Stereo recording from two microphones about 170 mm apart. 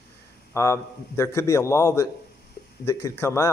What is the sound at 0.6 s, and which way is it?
A man's voice, 15° left (ahead or behind).